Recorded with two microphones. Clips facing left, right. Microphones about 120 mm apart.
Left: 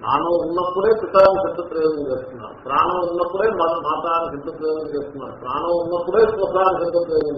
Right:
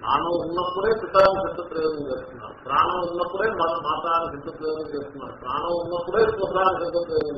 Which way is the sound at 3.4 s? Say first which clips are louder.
Left 5 dB; 35° left (ahead or behind).